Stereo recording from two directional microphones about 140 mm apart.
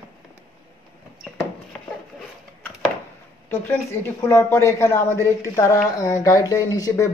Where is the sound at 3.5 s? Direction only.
15° left (ahead or behind).